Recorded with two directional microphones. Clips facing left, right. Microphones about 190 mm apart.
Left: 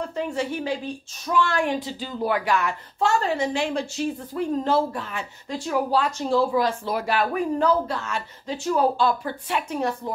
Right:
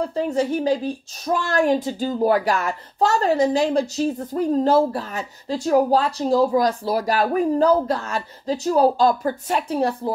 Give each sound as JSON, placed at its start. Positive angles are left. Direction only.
{"t": 0.0, "sound": "speech", "side_deg": -40}